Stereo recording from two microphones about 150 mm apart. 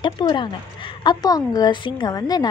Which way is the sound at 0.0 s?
30° left (ahead or behind).